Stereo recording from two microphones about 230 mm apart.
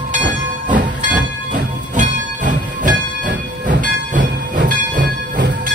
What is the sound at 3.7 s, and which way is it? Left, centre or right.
Train, right.